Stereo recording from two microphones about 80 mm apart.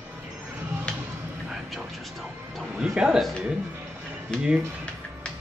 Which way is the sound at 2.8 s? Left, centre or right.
Centre.